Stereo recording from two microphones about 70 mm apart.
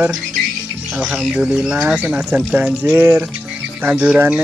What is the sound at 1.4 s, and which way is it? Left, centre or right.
Speech, centre.